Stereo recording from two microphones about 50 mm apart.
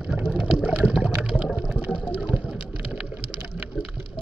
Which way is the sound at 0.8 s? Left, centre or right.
Right.